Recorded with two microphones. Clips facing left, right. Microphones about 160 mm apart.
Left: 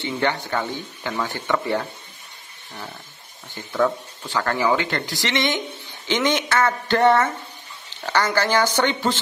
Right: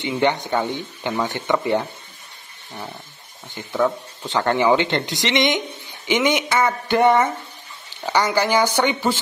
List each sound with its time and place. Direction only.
0.0 s speech: 20° right (ahead or behind)
3.8 s speech: 20° right (ahead or behind)